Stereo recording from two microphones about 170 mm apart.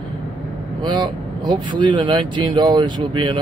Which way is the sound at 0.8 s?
25° right (ahead or behind).